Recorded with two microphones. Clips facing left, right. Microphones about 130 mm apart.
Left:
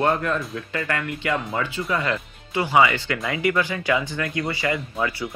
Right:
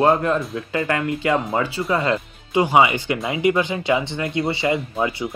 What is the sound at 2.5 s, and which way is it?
Speech, 15° right (ahead or behind).